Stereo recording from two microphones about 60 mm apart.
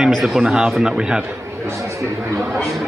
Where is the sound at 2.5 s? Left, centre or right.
Centre.